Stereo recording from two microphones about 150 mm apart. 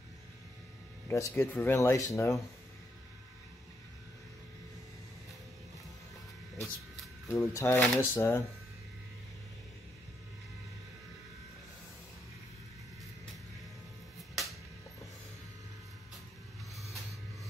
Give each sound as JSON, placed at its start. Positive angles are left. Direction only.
{"t": 1.0, "sound": "speech", "side_deg": 20}
{"t": 7.3, "sound": "speech", "side_deg": 15}
{"t": 14.3, "sound": "a sound", "side_deg": 0}